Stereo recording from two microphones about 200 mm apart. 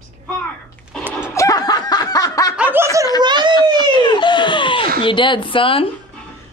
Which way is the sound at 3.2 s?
20° right (ahead or behind).